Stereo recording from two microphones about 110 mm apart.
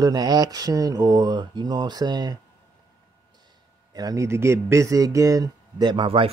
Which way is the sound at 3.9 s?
30° right (ahead or behind).